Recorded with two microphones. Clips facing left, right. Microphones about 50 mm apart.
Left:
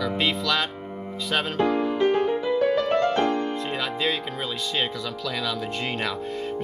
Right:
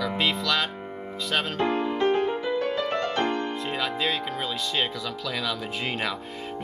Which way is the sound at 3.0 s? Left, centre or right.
Right.